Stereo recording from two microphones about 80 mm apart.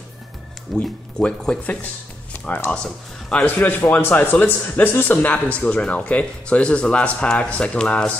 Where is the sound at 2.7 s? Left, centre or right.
Centre.